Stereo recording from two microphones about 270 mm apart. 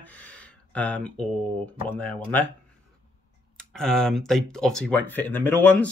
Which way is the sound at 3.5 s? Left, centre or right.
Centre.